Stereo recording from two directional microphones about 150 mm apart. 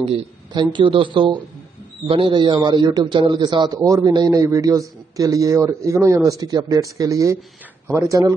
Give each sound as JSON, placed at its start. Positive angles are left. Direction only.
{"t": 0.0, "sound": "a man's voice", "side_deg": -40}
{"t": 0.5, "sound": "a man's voice", "side_deg": -30}